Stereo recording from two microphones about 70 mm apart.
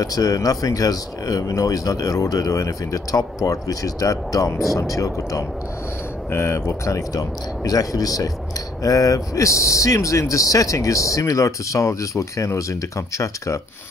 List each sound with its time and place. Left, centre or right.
0.0 s speech: left
6.3 s speech: left